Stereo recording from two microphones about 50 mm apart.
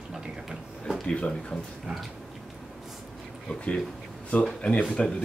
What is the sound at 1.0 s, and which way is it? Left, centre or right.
Speech, centre.